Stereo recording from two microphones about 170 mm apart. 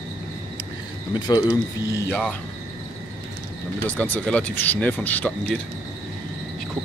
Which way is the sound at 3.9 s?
10° left (ahead or behind).